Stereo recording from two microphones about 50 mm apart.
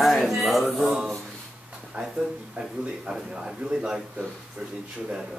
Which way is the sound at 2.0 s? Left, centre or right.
Right.